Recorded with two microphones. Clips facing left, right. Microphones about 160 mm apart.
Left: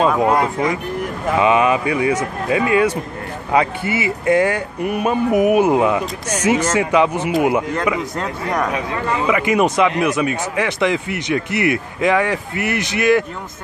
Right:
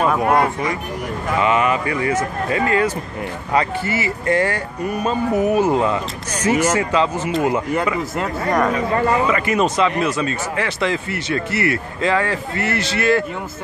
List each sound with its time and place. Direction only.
1.4 s a man's voice: 20° left (ahead or behind)
8.2 s speech: centre (ahead or behind)
9.3 s a man's voice: 15° left (ahead or behind)